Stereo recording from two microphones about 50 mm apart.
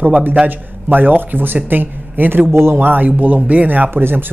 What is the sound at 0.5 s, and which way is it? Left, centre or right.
Speech, right.